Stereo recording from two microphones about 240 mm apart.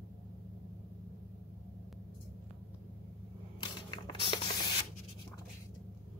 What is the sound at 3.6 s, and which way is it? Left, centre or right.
Spray, centre.